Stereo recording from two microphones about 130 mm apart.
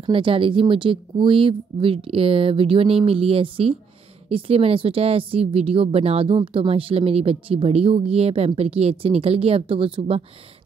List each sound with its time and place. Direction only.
0.0 s speech: 40° right (ahead or behind)